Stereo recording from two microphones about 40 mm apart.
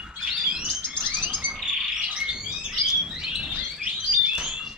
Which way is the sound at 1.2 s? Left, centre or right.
Right.